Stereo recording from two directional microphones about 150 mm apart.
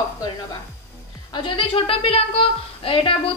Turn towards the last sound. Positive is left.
turn(degrees=35)  # may be behind; listen again after turning